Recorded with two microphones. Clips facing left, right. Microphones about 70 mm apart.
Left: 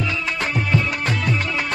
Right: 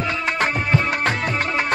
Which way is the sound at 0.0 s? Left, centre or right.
Right.